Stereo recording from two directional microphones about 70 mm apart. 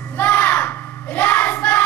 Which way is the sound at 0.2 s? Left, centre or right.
Left.